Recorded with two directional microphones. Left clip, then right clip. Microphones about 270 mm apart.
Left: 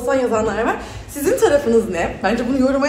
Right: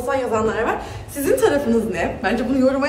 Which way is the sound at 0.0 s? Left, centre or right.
Centre.